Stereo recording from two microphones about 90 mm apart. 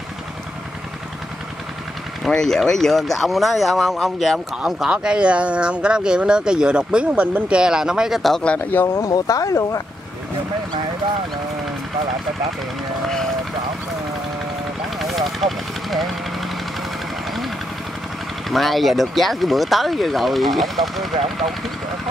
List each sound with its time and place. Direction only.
2.2 s speech: 5° left (ahead or behind)
8.5 s speech: 25° left (ahead or behind)
9.0 s speech: 40° left (ahead or behind)
13.0 s run: 5° left (ahead or behind)
15.4 s vehicle: centre (ahead or behind)
18.5 s speech: centre (ahead or behind)